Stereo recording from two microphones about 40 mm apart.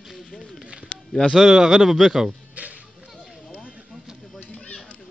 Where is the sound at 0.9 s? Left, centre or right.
Left.